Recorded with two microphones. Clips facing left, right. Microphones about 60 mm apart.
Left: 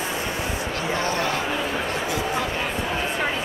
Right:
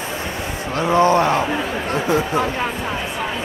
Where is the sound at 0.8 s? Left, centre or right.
Right.